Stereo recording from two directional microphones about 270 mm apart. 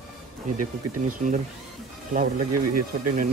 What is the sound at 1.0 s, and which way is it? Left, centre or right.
Speech, right.